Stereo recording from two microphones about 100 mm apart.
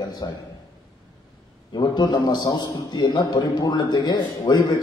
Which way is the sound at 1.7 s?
45° left (ahead or behind).